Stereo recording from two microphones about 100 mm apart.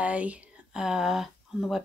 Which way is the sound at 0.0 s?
15° right (ahead or behind).